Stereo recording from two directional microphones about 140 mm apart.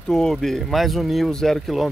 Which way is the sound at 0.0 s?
5° left (ahead or behind).